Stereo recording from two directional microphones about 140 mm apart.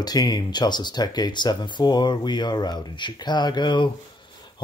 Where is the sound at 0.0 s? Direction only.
30° left (ahead or behind).